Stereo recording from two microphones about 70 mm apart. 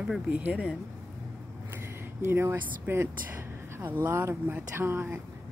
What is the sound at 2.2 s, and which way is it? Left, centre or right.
Speech, right.